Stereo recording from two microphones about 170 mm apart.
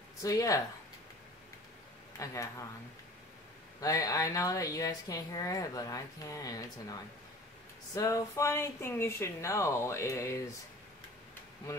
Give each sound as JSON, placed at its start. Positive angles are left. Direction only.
{"t": 0.2, "sound": "speech", "side_deg": 20}
{"t": 2.1, "sound": "speech", "side_deg": 20}
{"t": 3.8, "sound": "speech", "side_deg": 20}